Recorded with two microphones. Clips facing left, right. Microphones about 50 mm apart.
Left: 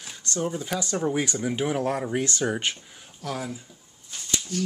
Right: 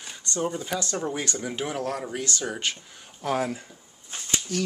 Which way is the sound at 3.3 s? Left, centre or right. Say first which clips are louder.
Right 6 dB; right.